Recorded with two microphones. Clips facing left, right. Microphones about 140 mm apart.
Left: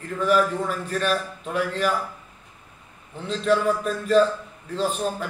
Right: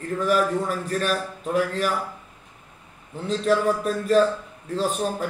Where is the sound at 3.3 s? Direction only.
40° right (ahead or behind).